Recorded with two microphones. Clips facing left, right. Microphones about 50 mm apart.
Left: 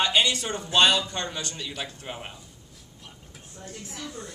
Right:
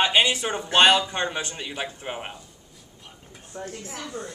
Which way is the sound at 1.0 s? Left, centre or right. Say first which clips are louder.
Right 5 dB; right.